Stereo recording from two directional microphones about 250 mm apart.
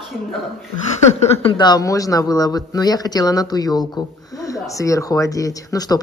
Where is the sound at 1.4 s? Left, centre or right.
Centre.